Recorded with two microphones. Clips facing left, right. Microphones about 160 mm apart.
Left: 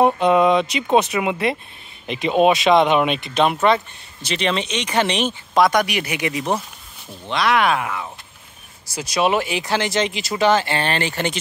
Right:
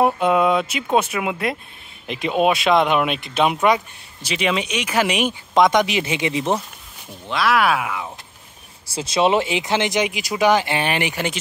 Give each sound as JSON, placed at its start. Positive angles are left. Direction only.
{"t": 0.0, "sound": "speech", "side_deg": -5}
{"t": 7.2, "sound": "speech", "side_deg": -5}
{"t": 8.8, "sound": "speech", "side_deg": -25}